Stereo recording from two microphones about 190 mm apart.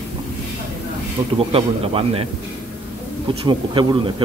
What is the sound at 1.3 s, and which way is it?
Speech, 30° right (ahead or behind).